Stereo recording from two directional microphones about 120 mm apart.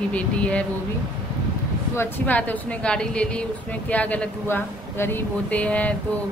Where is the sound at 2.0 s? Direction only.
15° left (ahead or behind).